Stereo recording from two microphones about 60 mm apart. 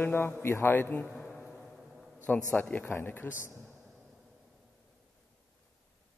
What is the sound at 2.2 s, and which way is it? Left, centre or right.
A man's voice, left.